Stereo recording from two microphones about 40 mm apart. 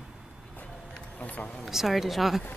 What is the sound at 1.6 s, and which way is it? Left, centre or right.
Speech, centre.